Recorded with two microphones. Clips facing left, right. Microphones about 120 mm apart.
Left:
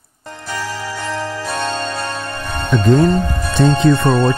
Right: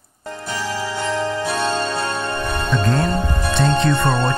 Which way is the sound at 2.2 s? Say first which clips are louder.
Right 3 dB; 25° right (ahead or behind).